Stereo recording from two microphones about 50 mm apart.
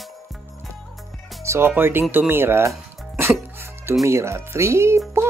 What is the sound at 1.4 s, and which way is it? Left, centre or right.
Music, right.